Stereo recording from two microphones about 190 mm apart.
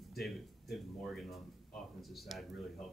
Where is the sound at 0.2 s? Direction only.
Centre (ahead or behind).